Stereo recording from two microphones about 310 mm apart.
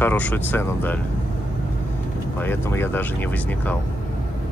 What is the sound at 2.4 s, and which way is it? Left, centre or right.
Speech, centre.